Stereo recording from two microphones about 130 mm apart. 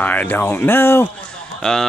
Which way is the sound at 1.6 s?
5° left (ahead or behind).